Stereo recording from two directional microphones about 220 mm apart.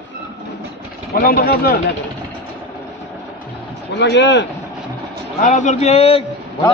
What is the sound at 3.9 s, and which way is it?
Speech, 50° left (ahead or behind).